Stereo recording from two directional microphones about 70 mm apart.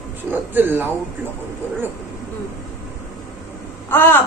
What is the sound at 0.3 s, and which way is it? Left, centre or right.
Speech, right.